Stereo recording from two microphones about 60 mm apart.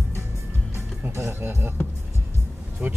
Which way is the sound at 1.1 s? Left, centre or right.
Right.